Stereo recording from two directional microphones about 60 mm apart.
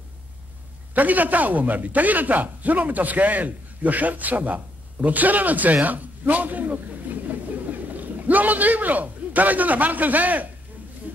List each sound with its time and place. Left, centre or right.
0.9 s a man's voice: right